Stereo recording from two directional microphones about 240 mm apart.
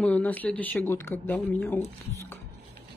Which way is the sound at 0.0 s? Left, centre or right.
Centre.